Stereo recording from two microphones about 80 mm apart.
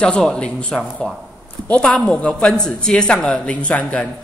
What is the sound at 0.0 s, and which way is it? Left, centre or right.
A man's voice, centre.